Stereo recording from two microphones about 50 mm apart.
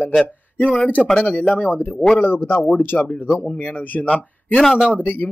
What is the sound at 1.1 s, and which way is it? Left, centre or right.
Speech, left.